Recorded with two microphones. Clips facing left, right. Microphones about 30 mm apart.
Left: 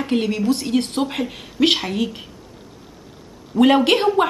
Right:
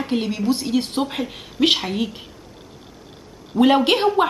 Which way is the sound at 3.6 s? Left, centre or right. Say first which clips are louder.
Left 1 dB; centre.